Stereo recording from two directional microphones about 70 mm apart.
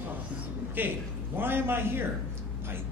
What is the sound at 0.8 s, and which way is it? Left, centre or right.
A man's voice, right.